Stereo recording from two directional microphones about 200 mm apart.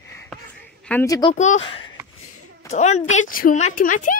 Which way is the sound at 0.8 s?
15° left (ahead or behind).